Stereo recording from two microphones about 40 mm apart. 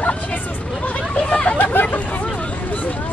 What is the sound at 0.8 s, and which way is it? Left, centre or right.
Hubbub, left.